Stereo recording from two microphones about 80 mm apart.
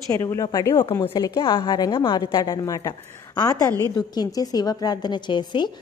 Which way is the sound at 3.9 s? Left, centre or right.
Left.